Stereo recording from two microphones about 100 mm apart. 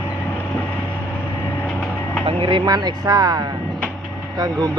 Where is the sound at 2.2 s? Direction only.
60° right (ahead or behind).